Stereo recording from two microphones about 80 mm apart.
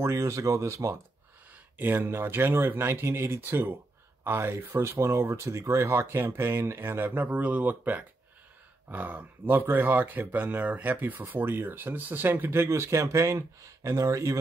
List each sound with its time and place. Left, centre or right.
0.0 s speech: right
1.5 s speech: right